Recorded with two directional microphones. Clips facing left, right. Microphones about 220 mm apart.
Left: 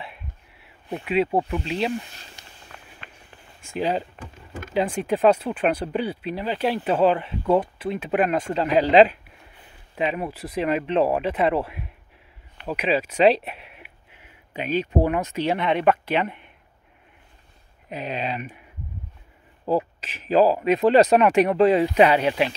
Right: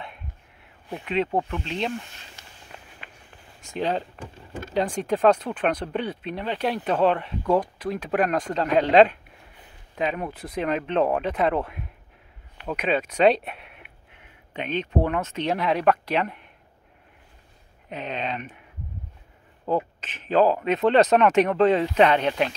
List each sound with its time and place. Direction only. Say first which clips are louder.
0.0 s a sound: left 1 dB; 5° left (ahead or behind)
2.4 s walk: left 1 dB; 15° left (ahead or behind)
3.0 s a sound: left 1 dB; 10° right (ahead or behind)
3.6 s speech: left 1 dB; 10° left (ahead or behind)
17.8 s speech: left 2 dB; 10° left (ahead or behind)
19.6 s speech: left 2 dB; 10° left (ahead or behind)